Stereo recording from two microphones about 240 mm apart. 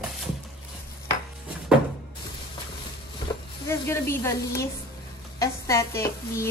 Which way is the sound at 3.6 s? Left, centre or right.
Centre.